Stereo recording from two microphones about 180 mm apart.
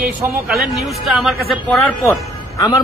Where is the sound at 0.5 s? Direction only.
Centre (ahead or behind).